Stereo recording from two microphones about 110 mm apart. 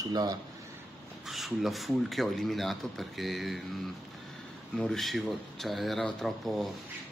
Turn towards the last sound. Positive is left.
turn(degrees=0)  # may be behind; listen again after turning